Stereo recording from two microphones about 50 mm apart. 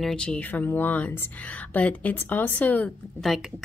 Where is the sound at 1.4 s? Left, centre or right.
Left.